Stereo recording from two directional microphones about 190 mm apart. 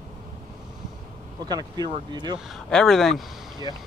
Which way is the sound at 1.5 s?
20° right (ahead or behind).